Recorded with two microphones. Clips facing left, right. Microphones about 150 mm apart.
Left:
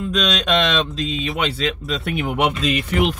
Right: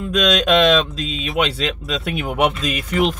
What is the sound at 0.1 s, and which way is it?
Speech, centre (ahead or behind).